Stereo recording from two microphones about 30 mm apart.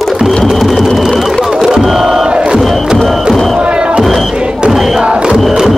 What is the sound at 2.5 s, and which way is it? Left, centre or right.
Crowd, centre.